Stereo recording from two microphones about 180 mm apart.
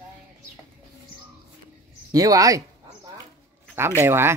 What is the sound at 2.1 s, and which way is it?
Speech, 20° right (ahead or behind).